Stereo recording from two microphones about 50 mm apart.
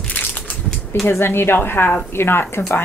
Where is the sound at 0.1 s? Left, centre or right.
Left.